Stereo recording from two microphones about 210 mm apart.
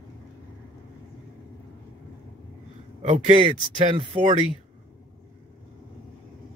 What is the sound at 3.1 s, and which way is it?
Speech, 30° right (ahead or behind).